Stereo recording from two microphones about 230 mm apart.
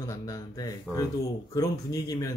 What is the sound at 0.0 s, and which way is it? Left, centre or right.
Speech, centre.